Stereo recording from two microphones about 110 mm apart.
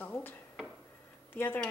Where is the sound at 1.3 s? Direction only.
20° left (ahead or behind).